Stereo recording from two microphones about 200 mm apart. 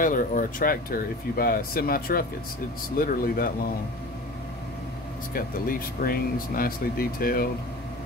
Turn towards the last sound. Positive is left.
turn(degrees=45)  # may be behind; listen again after turning